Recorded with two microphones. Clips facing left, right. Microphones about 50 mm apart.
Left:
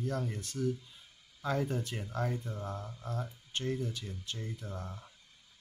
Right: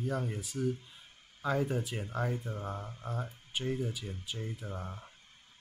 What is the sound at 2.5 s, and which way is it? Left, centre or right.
Speech, centre.